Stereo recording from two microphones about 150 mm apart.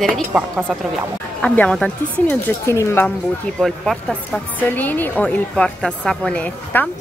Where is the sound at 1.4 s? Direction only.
5° left (ahead or behind).